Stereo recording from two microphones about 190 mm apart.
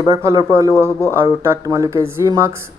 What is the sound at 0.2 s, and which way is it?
Speech, 15° right (ahead or behind).